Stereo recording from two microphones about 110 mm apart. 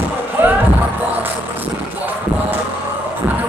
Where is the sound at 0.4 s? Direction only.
20° right (ahead or behind).